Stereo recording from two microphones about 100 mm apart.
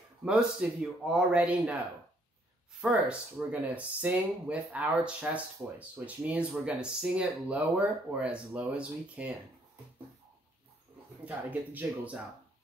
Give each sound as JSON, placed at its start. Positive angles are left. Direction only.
{"t": 0.2, "sound": "speech", "side_deg": -5}
{"t": 2.8, "sound": "speech", "side_deg": -5}
{"t": 11.2, "sound": "speech", "side_deg": -15}